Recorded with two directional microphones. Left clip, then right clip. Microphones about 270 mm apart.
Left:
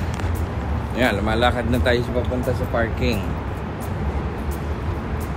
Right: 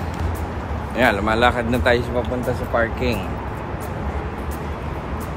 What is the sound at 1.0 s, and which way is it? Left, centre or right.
Speech, centre.